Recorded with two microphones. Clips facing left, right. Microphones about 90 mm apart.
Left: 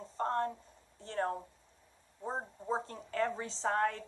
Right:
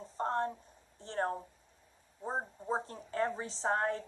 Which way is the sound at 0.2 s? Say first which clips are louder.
Even; 25° right (ahead or behind).